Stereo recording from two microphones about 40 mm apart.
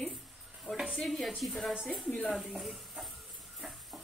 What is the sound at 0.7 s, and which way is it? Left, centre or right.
Speech, centre.